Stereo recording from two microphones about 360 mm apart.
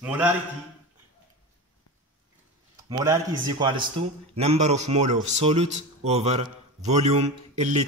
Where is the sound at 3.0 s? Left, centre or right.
Centre.